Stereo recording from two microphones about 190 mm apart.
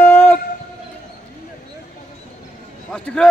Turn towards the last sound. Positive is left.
turn(degrees=5)  # may be behind; listen again after turning